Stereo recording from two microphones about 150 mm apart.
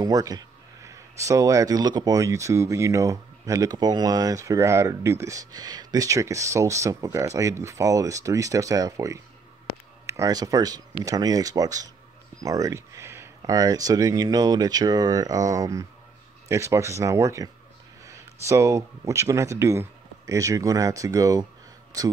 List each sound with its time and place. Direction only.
0.0 s speech: 25° right (ahead or behind)